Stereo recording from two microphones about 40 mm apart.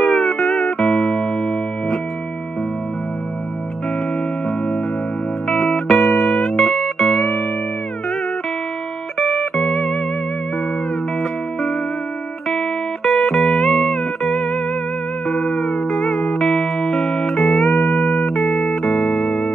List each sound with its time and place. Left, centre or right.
0.0 s music: centre
0.9 s music: centre
5.5 s music: centre
5.9 s music: centre
7.2 s music: left
9.4 s music: centre
12.5 s music: centre
15.5 s music: centre
17.0 s music: left
17.4 s music: centre
19.2 s music: left